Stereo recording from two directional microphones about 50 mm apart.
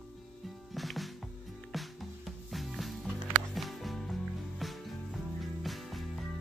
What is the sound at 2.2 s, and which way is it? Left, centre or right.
Music, centre.